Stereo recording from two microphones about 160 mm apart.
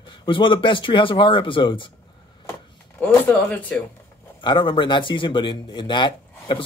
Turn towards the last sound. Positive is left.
turn(degrees=30)  # may be behind; listen again after turning